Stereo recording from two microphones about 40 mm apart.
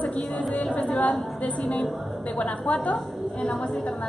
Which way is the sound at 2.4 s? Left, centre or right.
Left.